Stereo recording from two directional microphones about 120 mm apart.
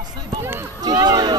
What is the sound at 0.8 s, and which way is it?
Speech, 35° right (ahead or behind).